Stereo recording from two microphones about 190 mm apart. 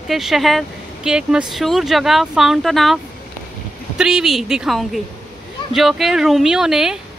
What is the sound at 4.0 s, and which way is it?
Speech, 5° right (ahead or behind).